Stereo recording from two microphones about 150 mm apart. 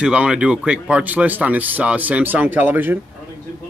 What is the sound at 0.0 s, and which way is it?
Speech, 5° right (ahead or behind).